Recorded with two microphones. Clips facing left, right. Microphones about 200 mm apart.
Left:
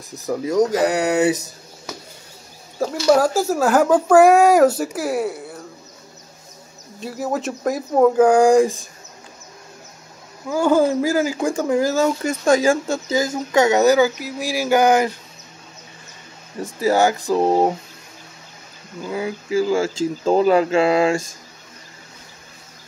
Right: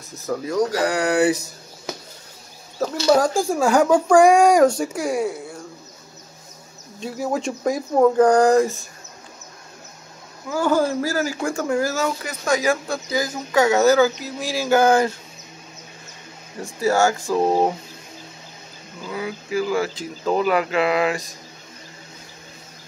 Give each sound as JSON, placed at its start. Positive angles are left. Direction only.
{"t": 0.3, "sound": "speech", "side_deg": 20}
{"t": 2.8, "sound": "speech", "side_deg": 10}
{"t": 7.0, "sound": "speech", "side_deg": 0}
{"t": 10.5, "sound": "speech", "side_deg": 15}
{"t": 16.6, "sound": "speech", "side_deg": 20}
{"t": 19.1, "sound": "speech", "side_deg": 25}